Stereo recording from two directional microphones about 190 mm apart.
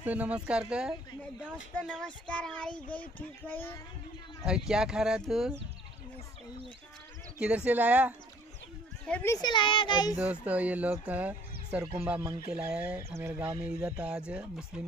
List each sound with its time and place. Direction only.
0.0 s speech: 10° right (ahead or behind); by 3.7 s 10° left (ahead or behind)
4.5 s speech: 5° right (ahead or behind)
7.3 s speech: 5° right (ahead or behind)
9.0 s a child's voice: 10° left (ahead or behind)
10.1 s speech: 10° right (ahead or behind)